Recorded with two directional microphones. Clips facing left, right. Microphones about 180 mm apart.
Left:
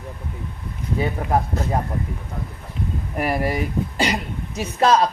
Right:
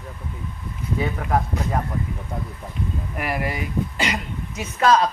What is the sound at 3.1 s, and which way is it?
Speech, 35° left (ahead or behind).